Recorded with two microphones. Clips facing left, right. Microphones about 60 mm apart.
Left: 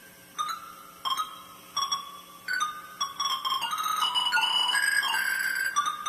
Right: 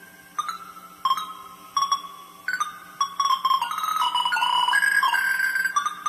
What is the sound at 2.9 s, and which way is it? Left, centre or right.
Music, right.